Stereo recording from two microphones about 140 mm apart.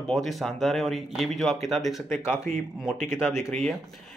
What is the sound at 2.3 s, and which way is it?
Speech, 20° left (ahead or behind).